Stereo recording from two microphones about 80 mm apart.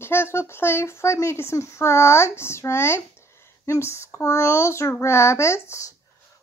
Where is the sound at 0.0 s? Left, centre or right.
Left.